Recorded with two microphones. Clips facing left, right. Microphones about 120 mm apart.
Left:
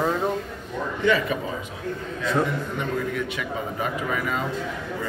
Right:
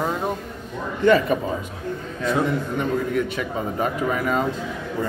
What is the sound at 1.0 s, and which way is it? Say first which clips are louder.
Speech: right 5 dB; 45° right (ahead or behind).